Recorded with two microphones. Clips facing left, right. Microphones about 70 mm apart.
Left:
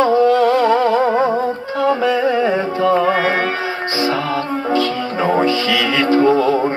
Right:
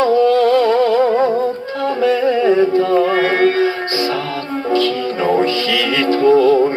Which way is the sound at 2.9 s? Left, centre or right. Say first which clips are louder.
Even; left.